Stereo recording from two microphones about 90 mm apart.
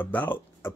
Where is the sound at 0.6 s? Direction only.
30° left (ahead or behind).